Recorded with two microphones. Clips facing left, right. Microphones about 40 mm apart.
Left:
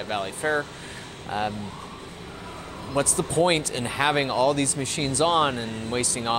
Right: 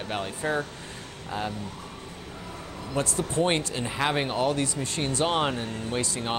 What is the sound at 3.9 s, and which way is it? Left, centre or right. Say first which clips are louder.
Speech: left 4 dB; centre.